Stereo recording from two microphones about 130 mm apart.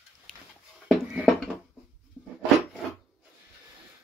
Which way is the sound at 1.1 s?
Centre (ahead or behind).